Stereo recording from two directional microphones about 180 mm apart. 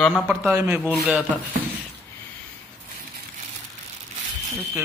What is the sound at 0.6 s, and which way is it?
Speech, 10° right (ahead or behind).